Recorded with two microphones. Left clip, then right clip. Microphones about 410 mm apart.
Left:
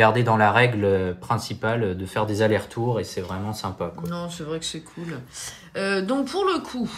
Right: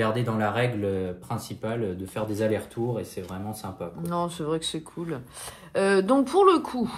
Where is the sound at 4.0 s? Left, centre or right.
Centre.